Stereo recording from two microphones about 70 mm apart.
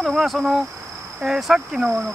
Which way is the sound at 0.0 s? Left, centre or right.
Centre.